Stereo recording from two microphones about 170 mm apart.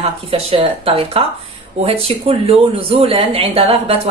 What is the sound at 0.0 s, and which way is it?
Speech, 35° right (ahead or behind).